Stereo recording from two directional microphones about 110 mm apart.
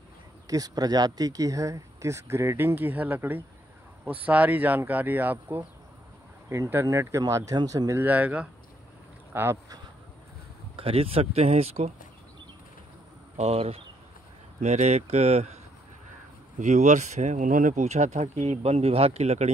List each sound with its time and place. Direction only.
0.5 s speech: 35° right (ahead or behind)
8.0 s speech: 15° right (ahead or behind)
10.8 s speech: 60° right (ahead or behind)
13.4 s speech: 65° right (ahead or behind)
14.6 s speech: 90° right
16.5 s speech: 90° right